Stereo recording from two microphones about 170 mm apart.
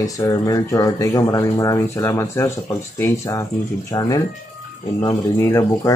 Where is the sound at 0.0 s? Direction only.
20° left (ahead or behind).